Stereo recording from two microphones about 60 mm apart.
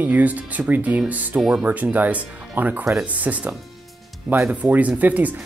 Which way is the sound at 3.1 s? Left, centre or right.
Right.